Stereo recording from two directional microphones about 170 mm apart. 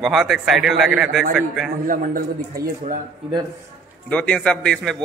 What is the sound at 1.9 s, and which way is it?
Speech, 60° right (ahead or behind).